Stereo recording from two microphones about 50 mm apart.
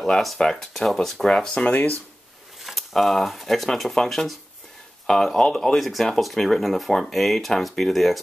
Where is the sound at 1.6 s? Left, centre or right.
Left.